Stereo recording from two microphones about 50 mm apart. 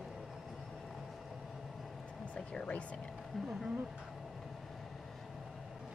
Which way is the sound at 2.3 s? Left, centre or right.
Left.